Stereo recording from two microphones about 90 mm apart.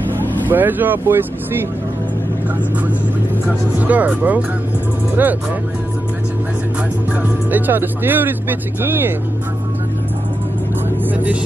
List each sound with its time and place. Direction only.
0.5 s speech: 20° right (ahead or behind)
3.8 s speech: 20° right (ahead or behind)
7.1 s speech: 20° right (ahead or behind)